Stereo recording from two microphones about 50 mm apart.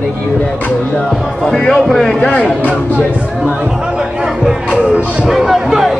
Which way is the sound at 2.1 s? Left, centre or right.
Left.